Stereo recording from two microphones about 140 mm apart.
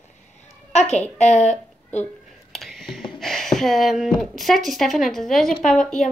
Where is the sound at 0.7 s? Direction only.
50° left (ahead or behind).